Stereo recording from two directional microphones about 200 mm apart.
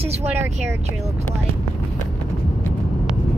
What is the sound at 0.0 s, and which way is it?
Speech, 30° right (ahead or behind).